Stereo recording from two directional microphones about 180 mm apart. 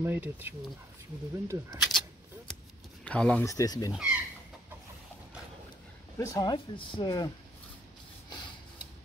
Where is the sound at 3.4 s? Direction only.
20° left (ahead or behind).